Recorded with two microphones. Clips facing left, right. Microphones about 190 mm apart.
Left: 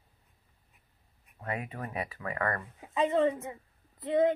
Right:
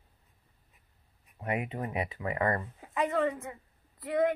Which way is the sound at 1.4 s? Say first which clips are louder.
Right 4 dB; 20° right (ahead or behind).